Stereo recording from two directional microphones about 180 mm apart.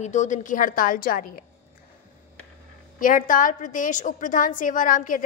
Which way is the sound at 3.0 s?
50° left (ahead or behind).